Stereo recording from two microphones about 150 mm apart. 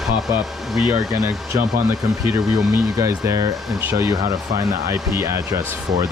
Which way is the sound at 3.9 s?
25° right (ahead or behind).